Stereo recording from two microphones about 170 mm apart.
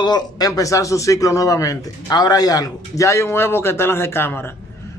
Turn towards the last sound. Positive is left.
turn(degrees=15)  # may be behind; listen again after turning